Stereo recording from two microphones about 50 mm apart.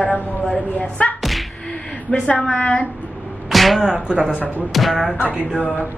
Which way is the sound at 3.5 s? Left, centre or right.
Centre.